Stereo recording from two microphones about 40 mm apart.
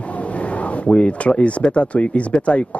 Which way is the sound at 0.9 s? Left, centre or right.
Left.